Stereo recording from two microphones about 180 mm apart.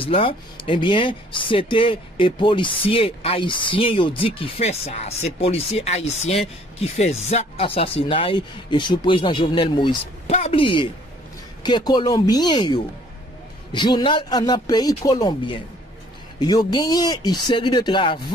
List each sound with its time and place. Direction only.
0.0 s speech: 30° left (ahead or behind)